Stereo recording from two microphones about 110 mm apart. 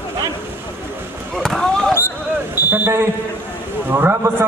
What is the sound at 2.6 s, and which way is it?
Fire alarm, 20° right (ahead or behind).